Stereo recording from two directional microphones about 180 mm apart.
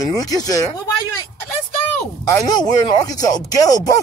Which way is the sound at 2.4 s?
20° left (ahead or behind).